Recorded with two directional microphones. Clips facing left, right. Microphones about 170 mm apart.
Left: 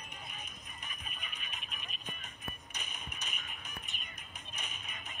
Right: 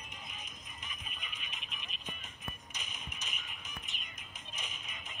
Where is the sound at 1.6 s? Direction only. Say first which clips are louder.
Left 1 dB; 45° left (ahead or behind).